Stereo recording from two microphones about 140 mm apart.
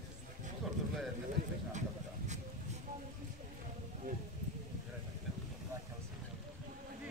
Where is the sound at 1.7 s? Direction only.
60° right (ahead or behind).